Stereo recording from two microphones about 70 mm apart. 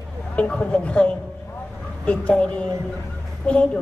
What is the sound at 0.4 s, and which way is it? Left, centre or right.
Speech, centre.